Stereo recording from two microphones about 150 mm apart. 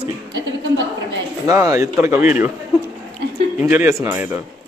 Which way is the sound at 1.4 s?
20° right (ahead or behind).